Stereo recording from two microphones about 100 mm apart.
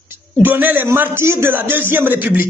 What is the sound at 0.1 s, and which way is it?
A woman's voice, 20° right (ahead or behind).